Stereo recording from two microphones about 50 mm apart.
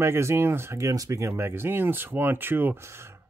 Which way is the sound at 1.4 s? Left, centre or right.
Right.